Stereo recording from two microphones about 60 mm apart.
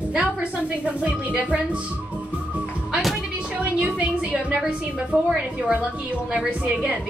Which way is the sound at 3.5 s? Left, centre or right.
Centre.